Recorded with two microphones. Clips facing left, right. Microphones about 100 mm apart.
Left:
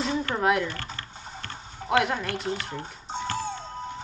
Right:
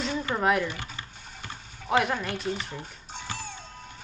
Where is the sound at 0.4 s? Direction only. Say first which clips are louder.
Even; centre (ahead or behind).